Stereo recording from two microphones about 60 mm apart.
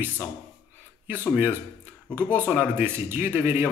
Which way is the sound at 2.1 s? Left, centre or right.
Right.